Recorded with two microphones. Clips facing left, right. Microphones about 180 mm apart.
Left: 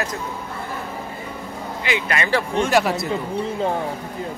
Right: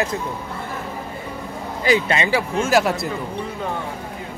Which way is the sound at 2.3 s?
5° right (ahead or behind).